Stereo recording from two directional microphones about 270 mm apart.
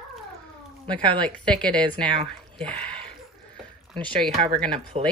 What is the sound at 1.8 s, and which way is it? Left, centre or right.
Speech, centre.